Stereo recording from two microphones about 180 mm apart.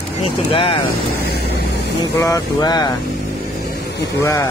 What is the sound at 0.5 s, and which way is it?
Speech, 30° left (ahead or behind).